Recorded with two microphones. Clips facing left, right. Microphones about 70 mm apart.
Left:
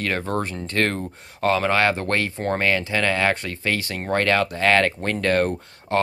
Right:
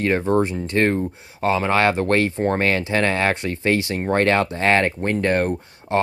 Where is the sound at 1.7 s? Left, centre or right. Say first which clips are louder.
Right 3 dB; right.